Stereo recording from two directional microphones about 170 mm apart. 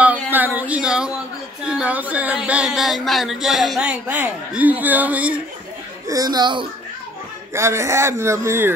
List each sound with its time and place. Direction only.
0.0 s a sound: 10° right (ahead or behind)
1.7 s speech: 5° right (ahead or behind)
6.0 s speech: 20° right (ahead or behind)